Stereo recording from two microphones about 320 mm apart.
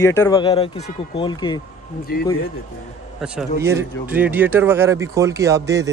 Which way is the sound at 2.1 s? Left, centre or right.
Left.